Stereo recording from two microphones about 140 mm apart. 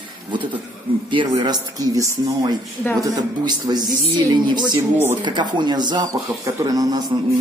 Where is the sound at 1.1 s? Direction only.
30° right (ahead or behind).